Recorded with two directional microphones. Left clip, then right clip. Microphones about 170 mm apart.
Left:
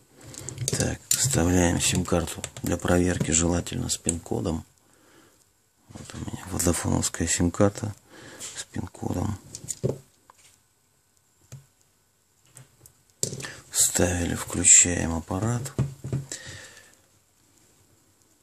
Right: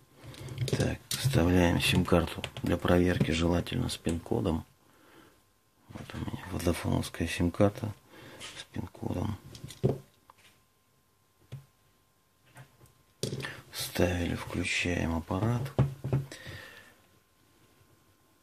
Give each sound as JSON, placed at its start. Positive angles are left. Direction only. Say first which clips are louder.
{"t": 0.2, "sound": "speech", "louder": "left 6 dB", "side_deg": 20}
{"t": 13.4, "sound": "speech", "louder": "left 9 dB", "side_deg": 15}
{"t": 16.3, "sound": "sniff", "louder": "left 5 dB", "side_deg": 20}